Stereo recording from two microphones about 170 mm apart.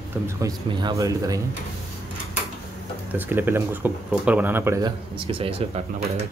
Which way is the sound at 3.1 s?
10° right (ahead or behind).